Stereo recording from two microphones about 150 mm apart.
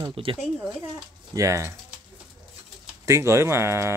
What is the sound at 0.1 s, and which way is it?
Speech, 35° right (ahead or behind).